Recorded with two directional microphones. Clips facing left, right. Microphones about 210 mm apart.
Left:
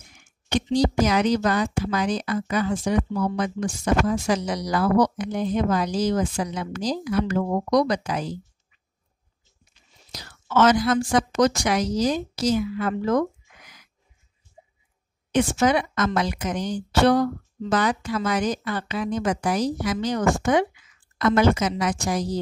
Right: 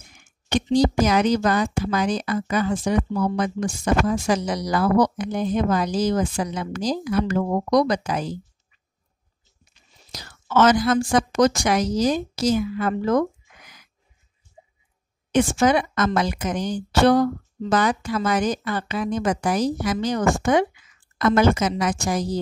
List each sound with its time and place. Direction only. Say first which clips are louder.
0.5 s speech: right 2 dB; 50° right (ahead or behind)
10.1 s speech: right 1 dB; 45° right (ahead or behind)
15.3 s speech: right 2 dB; 50° right (ahead or behind)